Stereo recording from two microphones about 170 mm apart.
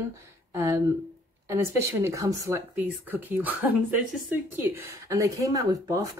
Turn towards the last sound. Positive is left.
turn(degrees=-20)  # may be behind; listen again after turning